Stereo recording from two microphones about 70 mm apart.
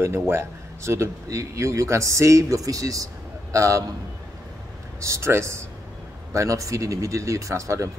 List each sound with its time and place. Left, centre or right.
0.3 s speech: right
5.0 s speech: right
6.3 s speech: right